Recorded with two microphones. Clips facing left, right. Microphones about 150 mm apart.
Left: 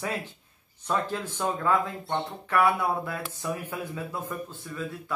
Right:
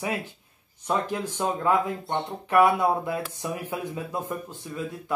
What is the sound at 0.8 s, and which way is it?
Speech, 15° right (ahead or behind).